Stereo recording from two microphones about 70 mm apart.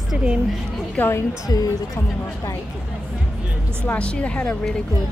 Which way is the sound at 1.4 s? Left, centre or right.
Left.